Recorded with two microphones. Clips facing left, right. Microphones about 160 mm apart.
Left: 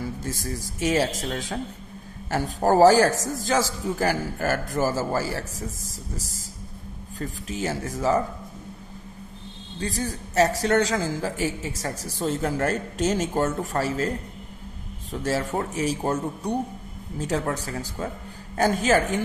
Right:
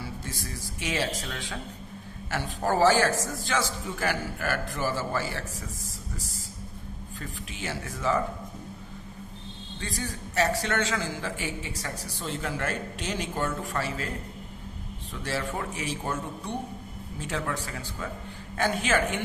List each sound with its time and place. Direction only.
0.0 s a woman's voice: 45° left (ahead or behind)
7.2 s a woman's voice: 40° left (ahead or behind)
9.8 s a woman's voice: 40° left (ahead or behind)
15.2 s a woman's voice: 40° left (ahead or behind)